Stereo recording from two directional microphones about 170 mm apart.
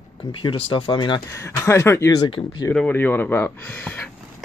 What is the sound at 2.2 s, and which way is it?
Speech, 30° left (ahead or behind).